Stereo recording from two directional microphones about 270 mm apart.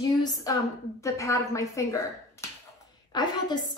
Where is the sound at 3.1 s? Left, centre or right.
Centre.